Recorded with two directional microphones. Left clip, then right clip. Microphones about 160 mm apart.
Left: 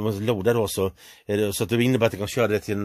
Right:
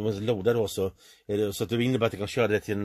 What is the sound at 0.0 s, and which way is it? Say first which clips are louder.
Speech: left 3 dB; 45° left (ahead or behind).